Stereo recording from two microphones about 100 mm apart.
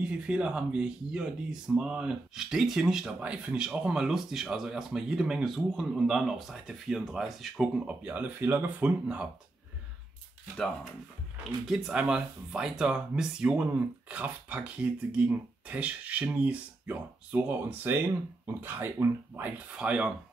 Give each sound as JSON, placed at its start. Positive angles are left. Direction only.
{"t": 0.0, "sound": "speech", "side_deg": -10}
{"t": 11.6, "sound": "speech", "side_deg": -5}
{"t": 19.8, "sound": "speech", "side_deg": -10}